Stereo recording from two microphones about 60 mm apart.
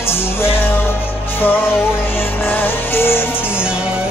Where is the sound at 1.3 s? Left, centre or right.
Left.